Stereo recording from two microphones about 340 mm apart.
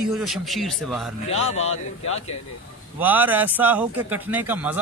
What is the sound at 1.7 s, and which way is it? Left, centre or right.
Speech, left.